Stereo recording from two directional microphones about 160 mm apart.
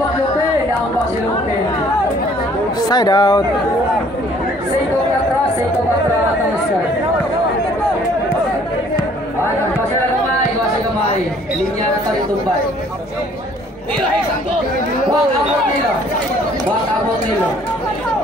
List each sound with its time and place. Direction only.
2.9 s speech: 25° left (ahead or behind)